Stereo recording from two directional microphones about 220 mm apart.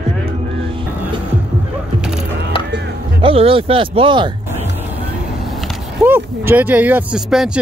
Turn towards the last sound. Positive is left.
turn(degrees=-5)  # may be behind; listen again after turning